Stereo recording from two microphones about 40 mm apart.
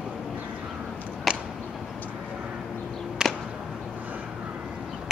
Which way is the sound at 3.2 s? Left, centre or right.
Right.